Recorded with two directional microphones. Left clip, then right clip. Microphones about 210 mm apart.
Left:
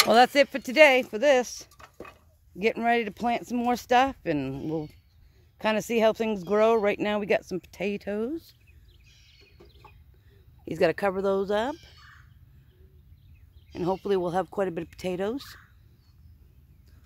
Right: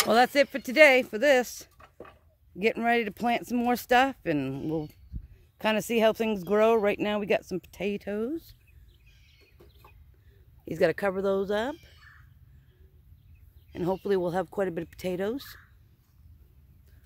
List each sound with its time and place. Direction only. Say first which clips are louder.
0.1 s speech: even; centre (ahead or behind)
1.7 s a sound: left 3 dB; 45° left (ahead or behind)
2.5 s speech: left 1 dB; 5° right (ahead or behind)
10.6 s speech: left 1 dB; centre (ahead or behind)
13.7 s speech: left 1 dB; 5° right (ahead or behind)